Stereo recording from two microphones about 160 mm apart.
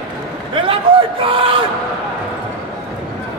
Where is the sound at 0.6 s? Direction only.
35° right (ahead or behind).